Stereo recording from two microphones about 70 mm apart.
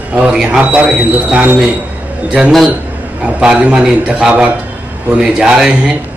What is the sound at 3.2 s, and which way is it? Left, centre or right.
Speech, centre.